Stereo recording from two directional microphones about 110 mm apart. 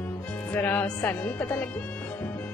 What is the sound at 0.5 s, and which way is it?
Speech, 15° left (ahead or behind).